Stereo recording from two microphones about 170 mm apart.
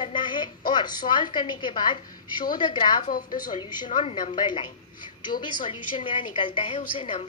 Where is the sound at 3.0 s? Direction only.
55° left (ahead or behind).